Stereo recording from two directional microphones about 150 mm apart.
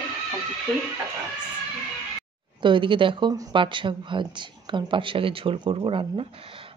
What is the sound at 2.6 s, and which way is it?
Speech, 35° right (ahead or behind).